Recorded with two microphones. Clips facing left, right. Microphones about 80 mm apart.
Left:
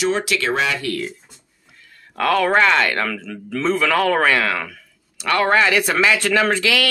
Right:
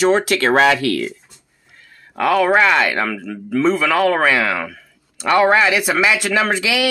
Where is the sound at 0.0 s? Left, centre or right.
Right.